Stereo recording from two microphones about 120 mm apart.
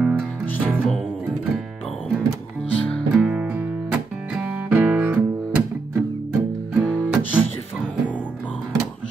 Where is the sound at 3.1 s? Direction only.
5° right (ahead or behind).